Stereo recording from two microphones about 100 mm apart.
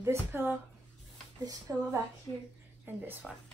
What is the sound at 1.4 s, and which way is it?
Speech, 35° right (ahead or behind).